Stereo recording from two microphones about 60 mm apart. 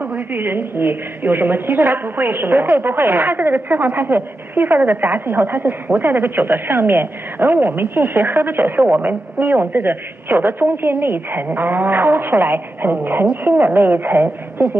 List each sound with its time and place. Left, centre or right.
0.0 s a woman's voice: right